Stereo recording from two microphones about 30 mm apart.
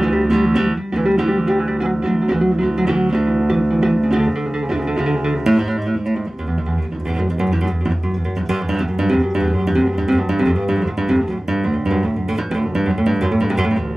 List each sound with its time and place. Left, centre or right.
0.0 s music: centre
8.5 s music: centre